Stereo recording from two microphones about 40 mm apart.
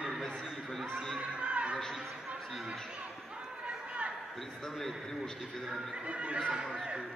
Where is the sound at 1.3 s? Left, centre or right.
Right.